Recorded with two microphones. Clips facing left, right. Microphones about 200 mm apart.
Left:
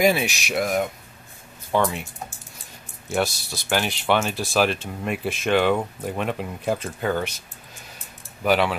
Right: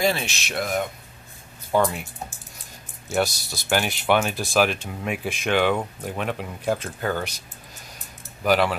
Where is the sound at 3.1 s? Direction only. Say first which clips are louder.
Even; centre (ahead or behind).